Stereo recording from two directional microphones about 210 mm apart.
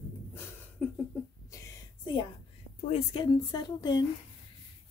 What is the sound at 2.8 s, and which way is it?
Speech, 30° left (ahead or behind).